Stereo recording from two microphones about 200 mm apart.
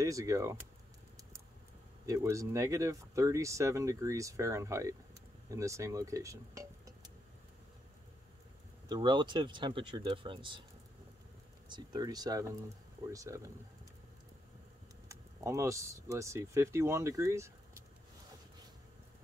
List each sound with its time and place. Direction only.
0.0 s speech: 15° right (ahead or behind)
2.0 s speech: 15° right (ahead or behind)
8.8 s speech: 20° right (ahead or behind)
11.7 s speech: 20° right (ahead or behind)
15.0 s speech: 15° right (ahead or behind)